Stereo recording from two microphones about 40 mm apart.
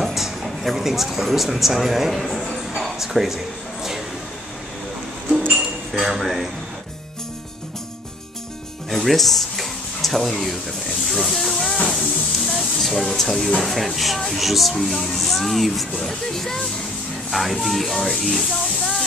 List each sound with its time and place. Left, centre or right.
0.0 s speech: centre
2.5 s a sound: centre
5.5 s music: centre
6.1 s speech: centre
8.9 s a sound: centre
11.1 s speech: centre
11.5 s music: centre
12.4 s hiss: centre
13.6 s speech: centre
16.1 s speech: centre
17.3 s speech: centre
18.1 s hiss: centre